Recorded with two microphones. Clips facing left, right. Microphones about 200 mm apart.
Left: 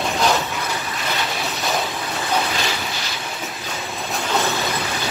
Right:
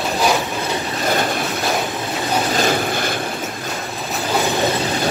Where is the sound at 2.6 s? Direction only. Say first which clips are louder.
Right 8 dB; 50° right (ahead or behind).